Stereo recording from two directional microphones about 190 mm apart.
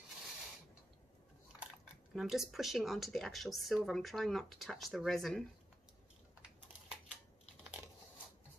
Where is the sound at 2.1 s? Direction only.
Centre (ahead or behind).